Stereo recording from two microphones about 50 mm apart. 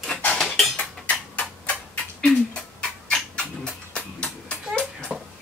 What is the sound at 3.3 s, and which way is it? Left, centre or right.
Music, left.